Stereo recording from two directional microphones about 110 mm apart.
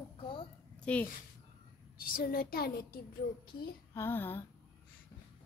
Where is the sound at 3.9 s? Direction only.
20° left (ahead or behind).